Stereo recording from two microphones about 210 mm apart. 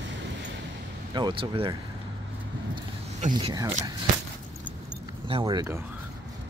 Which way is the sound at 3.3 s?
20° right (ahead or behind).